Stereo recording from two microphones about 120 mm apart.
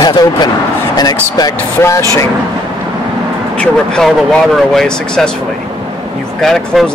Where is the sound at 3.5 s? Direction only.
10° left (ahead or behind).